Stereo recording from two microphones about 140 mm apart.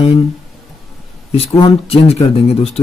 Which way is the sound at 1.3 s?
45° left (ahead or behind).